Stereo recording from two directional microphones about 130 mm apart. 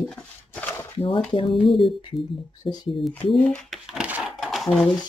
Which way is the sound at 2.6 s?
45° left (ahead or behind).